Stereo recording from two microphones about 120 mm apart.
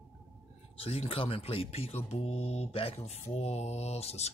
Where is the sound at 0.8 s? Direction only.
50° left (ahead or behind).